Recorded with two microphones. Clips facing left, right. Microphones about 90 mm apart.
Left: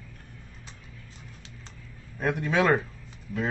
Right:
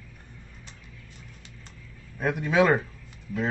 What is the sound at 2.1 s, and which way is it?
Speech, 5° right (ahead or behind).